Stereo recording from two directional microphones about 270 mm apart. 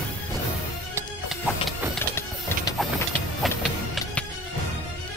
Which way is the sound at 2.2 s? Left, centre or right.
Centre.